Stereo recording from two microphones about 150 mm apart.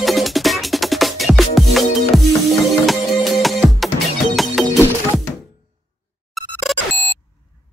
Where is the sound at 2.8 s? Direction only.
Centre (ahead or behind).